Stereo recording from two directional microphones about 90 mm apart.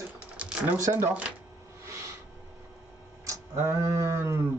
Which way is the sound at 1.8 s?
30° right (ahead or behind).